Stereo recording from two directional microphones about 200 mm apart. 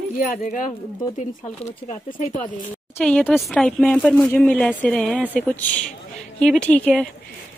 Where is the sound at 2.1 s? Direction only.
35° left (ahead or behind).